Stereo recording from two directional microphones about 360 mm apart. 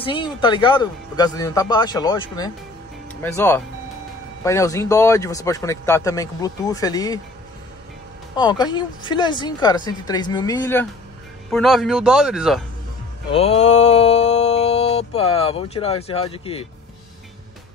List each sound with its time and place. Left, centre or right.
0.0 s a man's voice: centre
8.4 s a man's voice: centre
13.3 s mantra: centre